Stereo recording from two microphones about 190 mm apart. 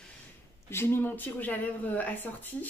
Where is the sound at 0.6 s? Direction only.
15° left (ahead or behind).